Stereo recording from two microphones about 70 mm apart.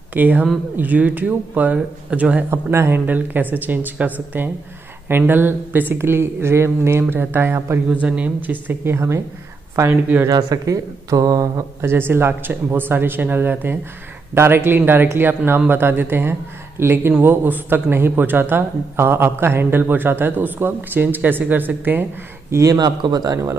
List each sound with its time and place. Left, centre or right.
0.1 s speech: right
2.5 s speech: right
3.1 s speech: right
7.9 s speech: right
10.2 s speech: right
11.8 s speech: right
22.7 s speech: right